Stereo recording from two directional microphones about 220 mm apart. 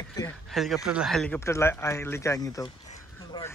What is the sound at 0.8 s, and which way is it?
Speech, 5° right (ahead or behind).